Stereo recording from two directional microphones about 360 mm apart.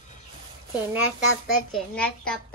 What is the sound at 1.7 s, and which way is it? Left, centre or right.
Speech, centre.